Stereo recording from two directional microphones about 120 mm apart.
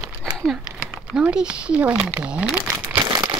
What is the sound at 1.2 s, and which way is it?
Speech, 10° right (ahead or behind).